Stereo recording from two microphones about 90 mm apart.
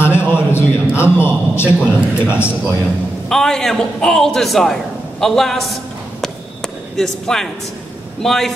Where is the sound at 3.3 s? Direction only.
5° left (ahead or behind).